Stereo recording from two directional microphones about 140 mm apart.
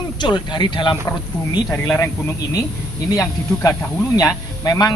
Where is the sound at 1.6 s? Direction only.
15° left (ahead or behind).